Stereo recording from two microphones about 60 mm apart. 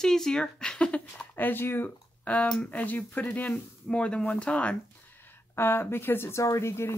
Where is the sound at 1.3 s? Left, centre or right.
Left.